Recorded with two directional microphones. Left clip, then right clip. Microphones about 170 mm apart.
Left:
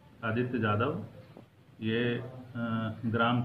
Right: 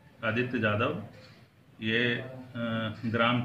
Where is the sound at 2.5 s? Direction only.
30° right (ahead or behind).